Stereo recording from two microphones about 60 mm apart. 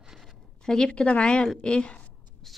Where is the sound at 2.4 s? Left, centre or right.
Centre.